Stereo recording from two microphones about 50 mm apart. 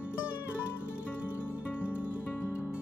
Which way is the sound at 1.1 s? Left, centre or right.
Left.